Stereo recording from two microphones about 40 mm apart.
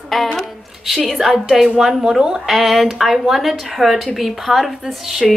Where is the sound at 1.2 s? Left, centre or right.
Centre.